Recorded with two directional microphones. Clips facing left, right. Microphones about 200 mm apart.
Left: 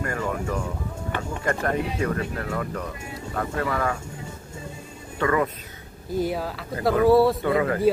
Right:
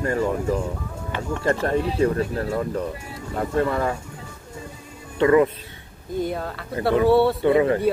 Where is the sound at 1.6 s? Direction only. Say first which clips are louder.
Right 5 dB; 30° right (ahead or behind).